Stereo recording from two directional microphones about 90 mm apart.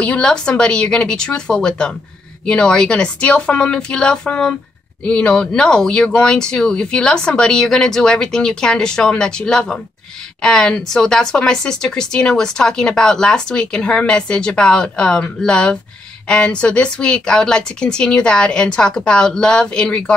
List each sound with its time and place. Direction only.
0.0 s speech: 10° left (ahead or behind)